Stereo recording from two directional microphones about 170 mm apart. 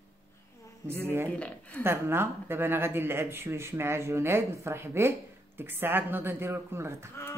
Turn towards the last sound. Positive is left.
turn(degrees=-15)  # may be behind; listen again after turning